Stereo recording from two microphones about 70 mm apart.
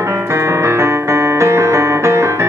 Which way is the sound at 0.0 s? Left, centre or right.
Right.